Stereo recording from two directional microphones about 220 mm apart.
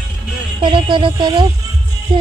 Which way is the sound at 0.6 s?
20° right (ahead or behind).